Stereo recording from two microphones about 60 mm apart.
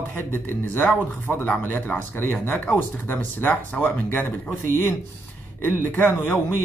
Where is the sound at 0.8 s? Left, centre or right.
Left.